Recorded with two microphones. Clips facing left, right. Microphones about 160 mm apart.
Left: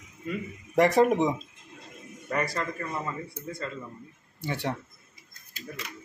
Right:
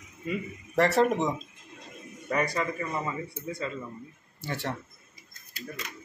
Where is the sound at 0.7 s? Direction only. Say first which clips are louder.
Left 2 dB; 15° left (ahead or behind).